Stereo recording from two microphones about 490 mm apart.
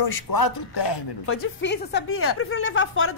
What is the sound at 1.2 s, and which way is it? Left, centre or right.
A woman's voice, left.